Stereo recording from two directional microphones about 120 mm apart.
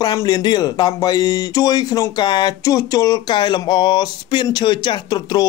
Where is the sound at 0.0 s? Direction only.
35° left (ahead or behind).